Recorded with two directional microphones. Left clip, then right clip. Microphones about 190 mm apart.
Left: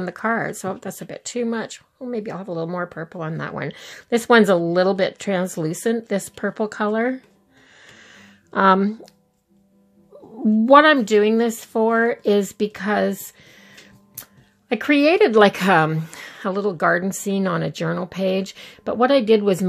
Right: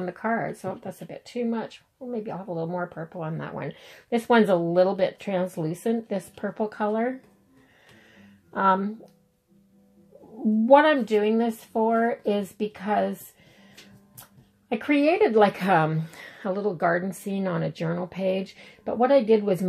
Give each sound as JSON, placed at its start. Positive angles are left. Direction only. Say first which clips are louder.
{"t": 0.0, "sound": "speech", "louder": "left 5 dB", "side_deg": 40}
{"t": 7.8, "sound": "a sound", "louder": "left 9 dB", "side_deg": 45}
{"t": 10.6, "sound": "speech", "louder": "left 5 dB", "side_deg": 50}
{"t": 14.7, "sound": "speech", "louder": "left 6 dB", "side_deg": 50}